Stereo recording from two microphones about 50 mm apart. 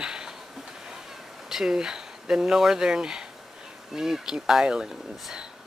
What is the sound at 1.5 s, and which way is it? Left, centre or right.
Speech, centre.